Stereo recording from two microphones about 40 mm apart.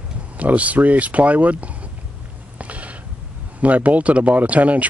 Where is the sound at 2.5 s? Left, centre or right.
Right.